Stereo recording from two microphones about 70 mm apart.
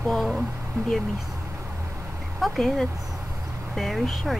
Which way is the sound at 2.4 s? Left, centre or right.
Centre.